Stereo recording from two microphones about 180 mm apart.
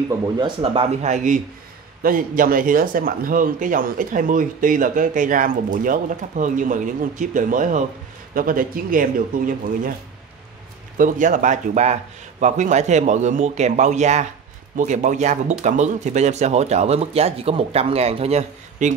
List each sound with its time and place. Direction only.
0.1 s speech: 30° right (ahead or behind); by 9.9 s 50° right (ahead or behind)
11.0 s speech: 45° right (ahead or behind)